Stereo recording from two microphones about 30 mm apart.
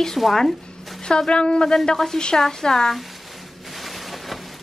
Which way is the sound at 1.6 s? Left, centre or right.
Left.